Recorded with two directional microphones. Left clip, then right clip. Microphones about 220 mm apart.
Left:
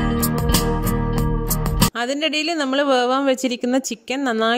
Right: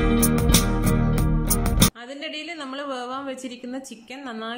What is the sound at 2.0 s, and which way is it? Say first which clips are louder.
A woman's voice: left 12 dB; 45° left (ahead or behind).